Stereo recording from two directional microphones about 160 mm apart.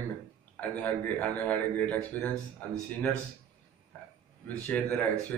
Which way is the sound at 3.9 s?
10° left (ahead or behind).